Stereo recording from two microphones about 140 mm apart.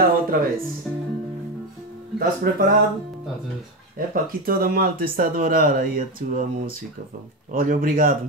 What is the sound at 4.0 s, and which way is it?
Speech, 90° right.